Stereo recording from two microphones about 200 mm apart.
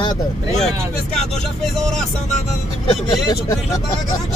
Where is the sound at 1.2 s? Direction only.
Centre (ahead or behind).